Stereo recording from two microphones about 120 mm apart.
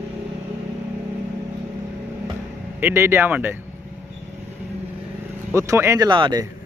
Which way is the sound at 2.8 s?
20° right (ahead or behind).